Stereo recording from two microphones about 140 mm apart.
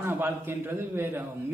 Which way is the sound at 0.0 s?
15° right (ahead or behind).